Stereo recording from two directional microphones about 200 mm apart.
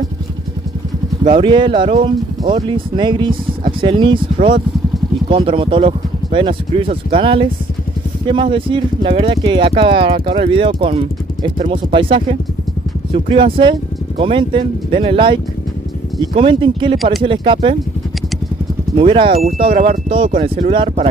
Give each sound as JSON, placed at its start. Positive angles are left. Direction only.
{"t": 1.3, "sound": "speech", "side_deg": -25}
{"t": 18.9, "sound": "speech", "side_deg": -25}